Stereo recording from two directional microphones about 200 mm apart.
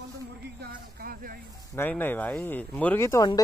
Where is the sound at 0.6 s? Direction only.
45° right (ahead or behind).